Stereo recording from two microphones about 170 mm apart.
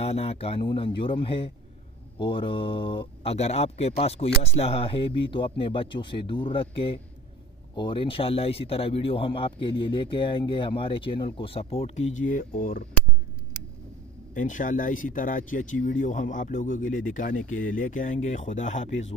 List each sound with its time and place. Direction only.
0.0 s speech: 35° left (ahead or behind); by 12.8 s 55° left (ahead or behind)
14.3 s speech: 50° left (ahead or behind)